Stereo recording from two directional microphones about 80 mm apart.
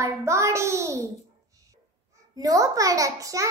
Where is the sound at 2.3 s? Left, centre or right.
Right.